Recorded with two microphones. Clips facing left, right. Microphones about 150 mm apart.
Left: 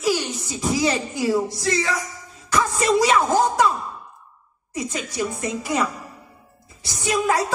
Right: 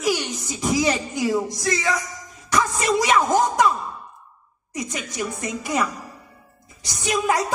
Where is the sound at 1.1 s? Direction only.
15° right (ahead or behind).